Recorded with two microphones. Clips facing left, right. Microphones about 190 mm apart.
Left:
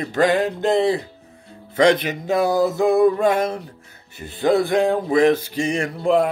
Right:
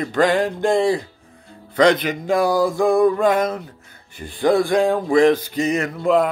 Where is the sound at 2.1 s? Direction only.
25° left (ahead or behind).